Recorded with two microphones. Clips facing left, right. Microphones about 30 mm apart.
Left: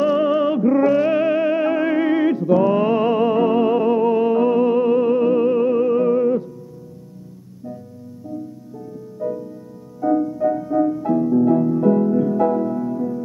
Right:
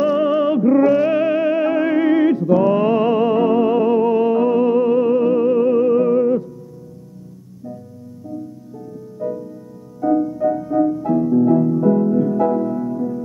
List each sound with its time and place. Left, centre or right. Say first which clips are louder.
0.0 s music: right 1 dB; centre
9.2 s music: even; centre
11.7 s music: right 1 dB; left
12.1 s music: right 1 dB; centre